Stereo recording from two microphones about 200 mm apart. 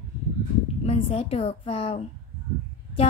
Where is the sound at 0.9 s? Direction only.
30° left (ahead or behind).